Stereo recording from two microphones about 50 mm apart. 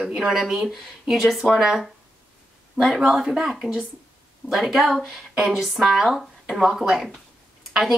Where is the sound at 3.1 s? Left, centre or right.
Centre.